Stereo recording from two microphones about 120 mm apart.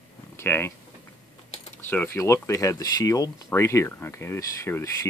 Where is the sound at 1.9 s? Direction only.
20° left (ahead or behind).